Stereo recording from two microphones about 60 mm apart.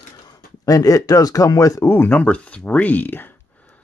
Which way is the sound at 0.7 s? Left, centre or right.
Left.